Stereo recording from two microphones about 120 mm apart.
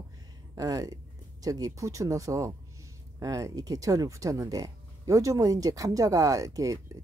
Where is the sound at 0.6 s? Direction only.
30° right (ahead or behind).